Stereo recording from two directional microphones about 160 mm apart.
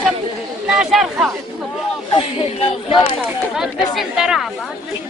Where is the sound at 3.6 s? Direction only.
5° right (ahead or behind).